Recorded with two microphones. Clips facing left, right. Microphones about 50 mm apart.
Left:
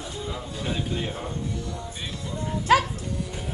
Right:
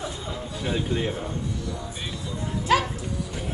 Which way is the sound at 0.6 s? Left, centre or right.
Centre.